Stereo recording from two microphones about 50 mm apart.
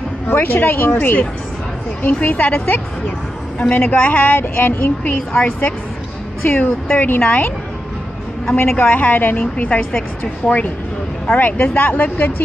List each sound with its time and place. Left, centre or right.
0.3 s speech: left
2.2 s a woman's voice: left
6.4 s a woman's voice: left
8.5 s a woman's voice: left
10.4 s speech: centre
11.3 s a woman's voice: left